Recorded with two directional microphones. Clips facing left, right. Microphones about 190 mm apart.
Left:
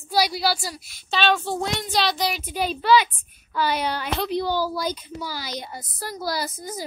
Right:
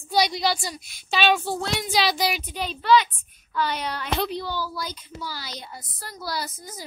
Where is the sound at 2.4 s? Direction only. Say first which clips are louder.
Left 5 dB; 10° left (ahead or behind).